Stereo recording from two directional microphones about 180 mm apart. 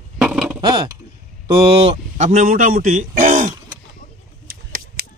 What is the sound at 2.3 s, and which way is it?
A man's voice, 50° right (ahead or behind).